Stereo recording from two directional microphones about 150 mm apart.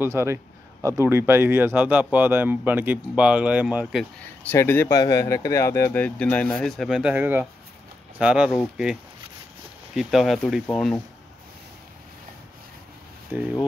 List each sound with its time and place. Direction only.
0.0 s speech: 15° right (ahead or behind)
3.8 s speech: 5° left (ahead or behind)
9.9 s speech: centre (ahead or behind)
13.3 s speech: 10° right (ahead or behind)